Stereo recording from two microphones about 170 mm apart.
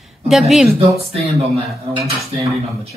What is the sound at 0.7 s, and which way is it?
Speech, 35° right (ahead or behind).